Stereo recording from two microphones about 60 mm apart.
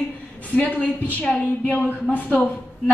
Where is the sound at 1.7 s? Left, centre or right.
Left.